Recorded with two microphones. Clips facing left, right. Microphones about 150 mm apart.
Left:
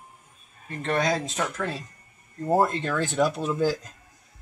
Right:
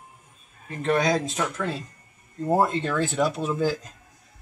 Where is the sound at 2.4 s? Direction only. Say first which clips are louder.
Even; 5° left (ahead or behind).